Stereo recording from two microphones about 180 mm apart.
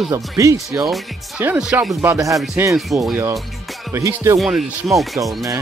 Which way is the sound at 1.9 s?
15° right (ahead or behind).